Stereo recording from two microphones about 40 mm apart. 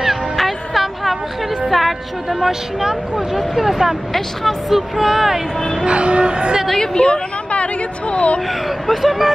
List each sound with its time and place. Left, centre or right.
0.0 s music: centre
1.7 s a sound: centre
2.4 s speech: centre
5.9 s speech: right
6.7 s a sound: centre; by 8.4 s left
8.8 s speech: centre